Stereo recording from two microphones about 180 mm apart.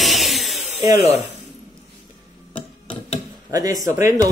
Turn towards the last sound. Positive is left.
turn(degrees=-15)  # may be behind; listen again after turning